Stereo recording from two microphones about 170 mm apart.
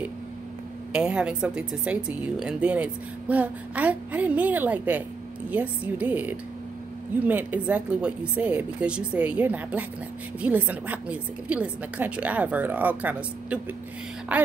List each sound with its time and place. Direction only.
0.9 s speech: 5° right (ahead or behind)